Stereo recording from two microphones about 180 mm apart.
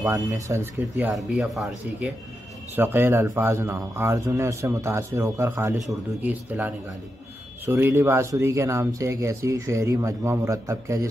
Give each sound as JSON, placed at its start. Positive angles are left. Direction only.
{"t": 0.0, "sound": "speech", "side_deg": -20}